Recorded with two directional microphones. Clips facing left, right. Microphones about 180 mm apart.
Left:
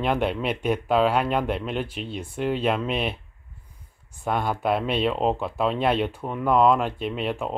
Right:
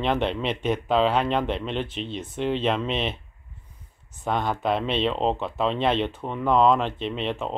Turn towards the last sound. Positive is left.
turn(degrees=5)  # may be behind; listen again after turning